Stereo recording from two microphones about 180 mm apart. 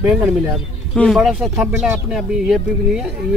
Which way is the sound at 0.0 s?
5° right (ahead or behind).